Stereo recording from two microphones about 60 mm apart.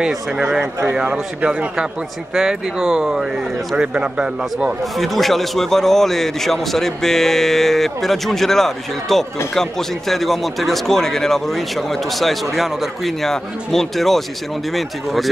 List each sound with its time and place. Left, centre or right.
0.4 s speech: centre
4.9 s a man's voice: centre